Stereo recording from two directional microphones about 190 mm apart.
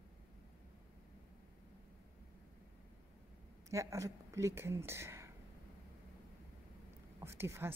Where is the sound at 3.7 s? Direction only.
15° right (ahead or behind).